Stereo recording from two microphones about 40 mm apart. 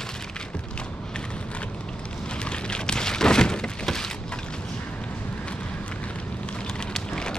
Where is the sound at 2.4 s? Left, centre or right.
Left.